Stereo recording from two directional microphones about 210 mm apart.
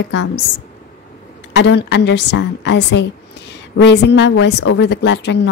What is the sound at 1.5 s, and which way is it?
A woman's voice, 55° left (ahead or behind).